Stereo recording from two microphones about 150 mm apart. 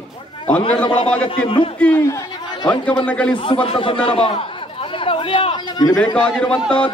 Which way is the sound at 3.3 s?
35° left (ahead or behind).